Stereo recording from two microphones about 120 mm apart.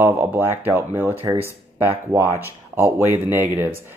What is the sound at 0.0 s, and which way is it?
Speech, 20° right (ahead or behind).